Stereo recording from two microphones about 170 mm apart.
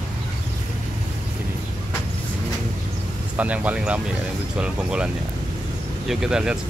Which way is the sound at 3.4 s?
10° right (ahead or behind).